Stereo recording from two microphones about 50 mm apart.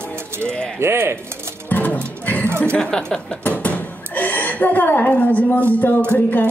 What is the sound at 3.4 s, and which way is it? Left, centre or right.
Speech, left.